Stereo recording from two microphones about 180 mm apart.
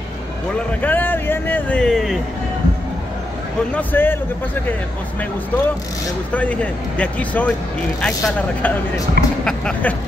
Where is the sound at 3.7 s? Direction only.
10° left (ahead or behind).